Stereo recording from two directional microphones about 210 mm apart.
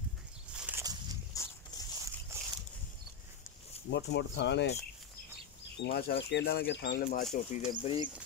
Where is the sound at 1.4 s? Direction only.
15° left (ahead or behind).